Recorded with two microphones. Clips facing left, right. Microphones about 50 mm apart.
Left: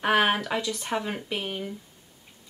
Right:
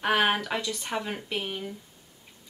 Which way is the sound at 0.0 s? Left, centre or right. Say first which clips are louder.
Left 2 dB; centre.